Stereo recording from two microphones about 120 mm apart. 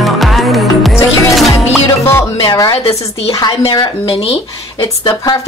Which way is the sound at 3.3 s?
35° left (ahead or behind).